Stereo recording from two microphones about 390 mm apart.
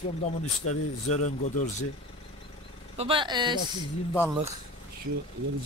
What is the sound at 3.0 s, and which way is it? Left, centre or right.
Speech, centre.